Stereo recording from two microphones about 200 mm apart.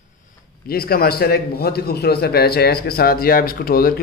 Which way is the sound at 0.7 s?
50° left (ahead or behind).